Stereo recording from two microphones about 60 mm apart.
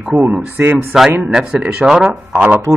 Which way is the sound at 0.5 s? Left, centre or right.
Right.